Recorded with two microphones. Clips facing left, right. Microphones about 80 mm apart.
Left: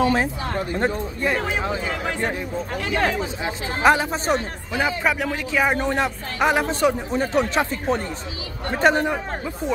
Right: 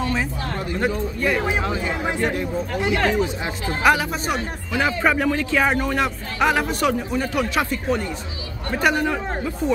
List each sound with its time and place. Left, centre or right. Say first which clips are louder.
0.1 s a man's voice: left 3 dB; left
5.0 s speech: right 3 dB; centre
5.8 s a man's voice: even; left
9.0 s a man's voice: right 1 dB; centre